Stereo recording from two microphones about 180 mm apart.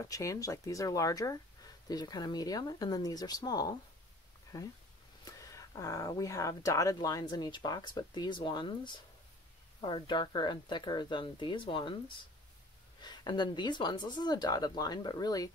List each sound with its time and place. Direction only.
0.0 s speech: 15° left (ahead or behind)
13.0 s speech: 25° left (ahead or behind)